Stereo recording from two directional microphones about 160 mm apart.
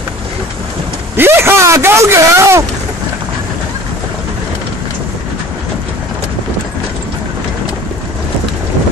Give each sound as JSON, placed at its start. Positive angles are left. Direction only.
{"t": 1.1, "sound": "a man's voice", "side_deg": -15}